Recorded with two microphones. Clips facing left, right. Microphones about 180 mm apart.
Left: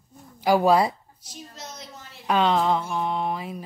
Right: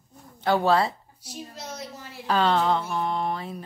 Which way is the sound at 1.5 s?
10° right (ahead or behind).